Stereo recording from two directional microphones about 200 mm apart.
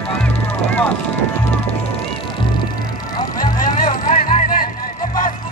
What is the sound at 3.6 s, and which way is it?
Music, 40° left (ahead or behind).